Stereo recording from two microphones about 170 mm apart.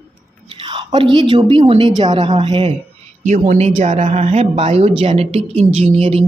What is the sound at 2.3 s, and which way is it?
Speech, 40° right (ahead or behind).